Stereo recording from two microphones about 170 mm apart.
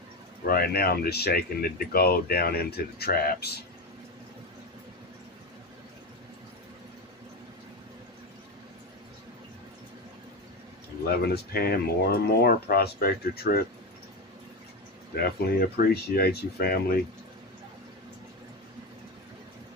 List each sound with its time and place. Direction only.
0.4 s speech: 60° left (ahead or behind)
11.1 s speech: 65° left (ahead or behind)
15.7 s speech: 65° left (ahead or behind)